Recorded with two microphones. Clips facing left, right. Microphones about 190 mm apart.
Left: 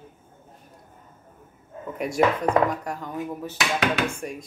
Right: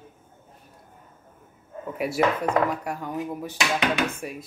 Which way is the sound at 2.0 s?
5° right (ahead or behind).